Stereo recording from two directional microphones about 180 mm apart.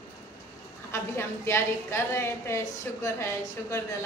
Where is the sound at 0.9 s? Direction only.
15° left (ahead or behind).